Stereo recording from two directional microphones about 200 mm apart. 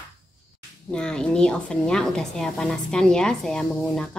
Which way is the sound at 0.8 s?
5° left (ahead or behind).